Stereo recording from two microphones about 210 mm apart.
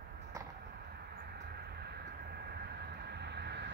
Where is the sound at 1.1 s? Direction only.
50° right (ahead or behind).